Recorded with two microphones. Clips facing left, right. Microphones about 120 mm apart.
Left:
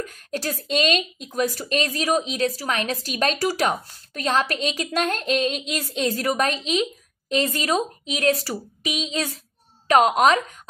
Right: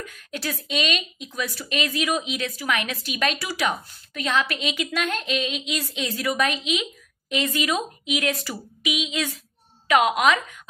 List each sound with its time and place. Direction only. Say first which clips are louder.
0.0 s speech: left 4 dB; 40° left (ahead or behind)